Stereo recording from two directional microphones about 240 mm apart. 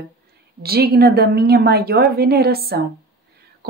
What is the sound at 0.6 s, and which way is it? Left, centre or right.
Speech, right.